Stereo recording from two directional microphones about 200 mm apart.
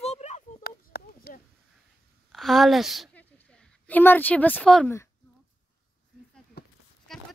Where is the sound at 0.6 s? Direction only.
50° left (ahead or behind).